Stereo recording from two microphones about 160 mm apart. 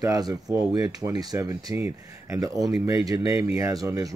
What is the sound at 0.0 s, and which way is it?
Speech, 20° right (ahead or behind).